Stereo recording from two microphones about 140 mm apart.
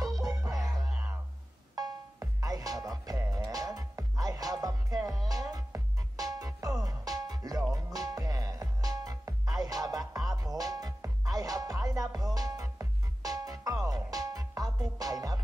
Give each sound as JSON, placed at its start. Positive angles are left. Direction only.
{"t": 0.0, "sound": "music", "side_deg": -25}
{"t": 1.8, "sound": "music", "side_deg": -25}